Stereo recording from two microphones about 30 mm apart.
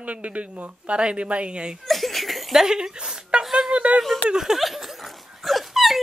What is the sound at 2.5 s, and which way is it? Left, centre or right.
Speech, centre.